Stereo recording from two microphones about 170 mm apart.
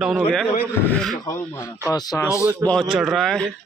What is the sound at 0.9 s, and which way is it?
Speech, centre (ahead or behind).